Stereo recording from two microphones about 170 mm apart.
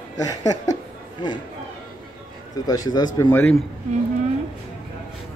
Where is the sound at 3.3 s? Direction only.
10° left (ahead or behind).